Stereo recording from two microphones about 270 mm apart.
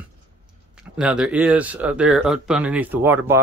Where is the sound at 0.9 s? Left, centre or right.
Centre.